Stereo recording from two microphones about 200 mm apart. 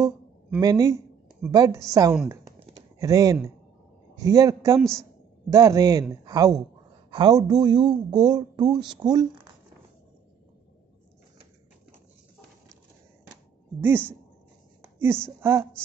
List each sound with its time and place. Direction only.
0.0 s speech: 15° right (ahead or behind)
2.2 s a sound: 15° right (ahead or behind)
3.0 s a man's voice: 15° right (ahead or behind)
13.7 s a man's voice: 10° right (ahead or behind)
15.2 s a man's voice: 10° right (ahead or behind)